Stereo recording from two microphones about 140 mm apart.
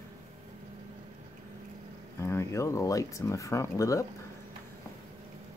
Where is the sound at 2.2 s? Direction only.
20° left (ahead or behind).